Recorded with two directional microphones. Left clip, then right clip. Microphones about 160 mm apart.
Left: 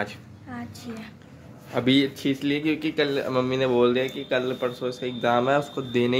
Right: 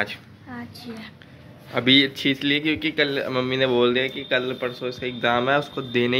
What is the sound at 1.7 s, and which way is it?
A man's voice, 10° left (ahead or behind).